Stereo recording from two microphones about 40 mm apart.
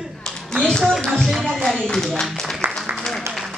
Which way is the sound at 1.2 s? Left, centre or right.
Centre.